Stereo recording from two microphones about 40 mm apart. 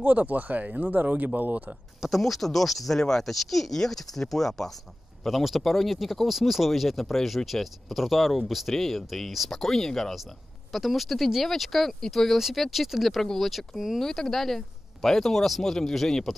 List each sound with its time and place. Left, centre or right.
0.0 s speech: right
2.0 s speech: centre
5.2 s speech: centre
8.7 s speech: centre
10.7 s speech: centre
13.9 s speech: centre